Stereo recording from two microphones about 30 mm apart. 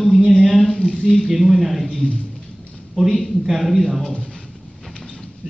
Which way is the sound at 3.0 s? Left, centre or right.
Left.